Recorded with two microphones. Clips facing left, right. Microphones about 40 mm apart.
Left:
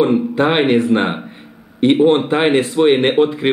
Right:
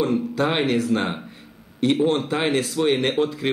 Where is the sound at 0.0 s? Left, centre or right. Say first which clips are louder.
Left 7 dB; left.